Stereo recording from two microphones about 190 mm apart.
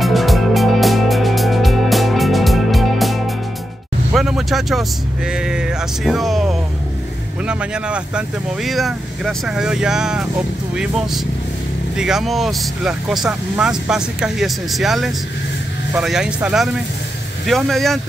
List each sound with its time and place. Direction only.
0.0 s music: centre (ahead or behind)
4.1 s vehicle: centre (ahead or behind)
7.4 s speech: 5° right (ahead or behind)